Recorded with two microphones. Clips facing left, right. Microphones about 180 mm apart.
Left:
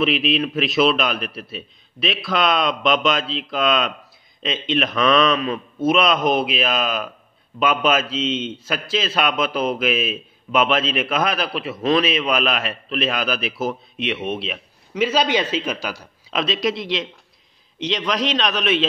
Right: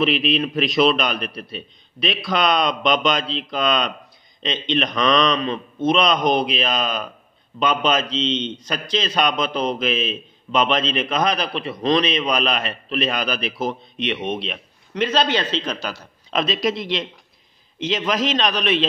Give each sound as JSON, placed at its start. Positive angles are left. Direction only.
{"t": 0.0, "sound": "a man's voice", "side_deg": 0}